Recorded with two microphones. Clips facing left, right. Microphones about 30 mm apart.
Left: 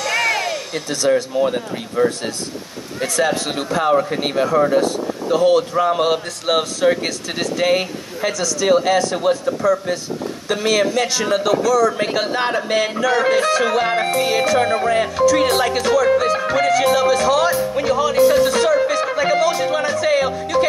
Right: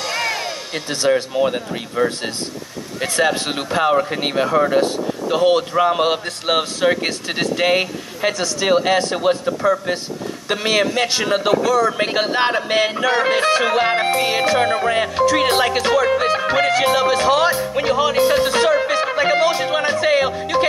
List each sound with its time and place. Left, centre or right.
0.7 s a man's voice: right